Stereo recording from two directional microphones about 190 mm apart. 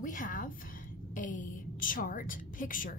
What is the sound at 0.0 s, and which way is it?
A woman's voice, 45° left (ahead or behind).